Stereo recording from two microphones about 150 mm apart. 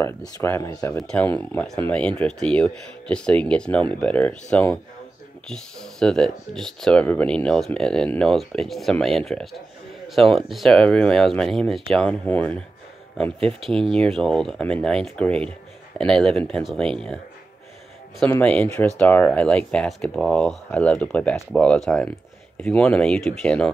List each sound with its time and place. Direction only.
0.0 s speech: 15° left (ahead or behind)
0.9 s speech: 10° left (ahead or behind)
18.2 s speech: 10° left (ahead or behind)